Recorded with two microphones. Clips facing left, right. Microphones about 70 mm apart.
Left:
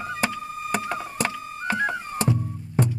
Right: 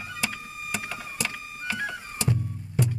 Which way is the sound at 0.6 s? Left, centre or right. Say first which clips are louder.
Left 7 dB; left.